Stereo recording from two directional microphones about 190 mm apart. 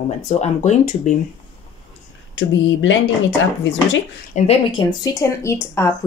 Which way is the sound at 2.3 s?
85° left.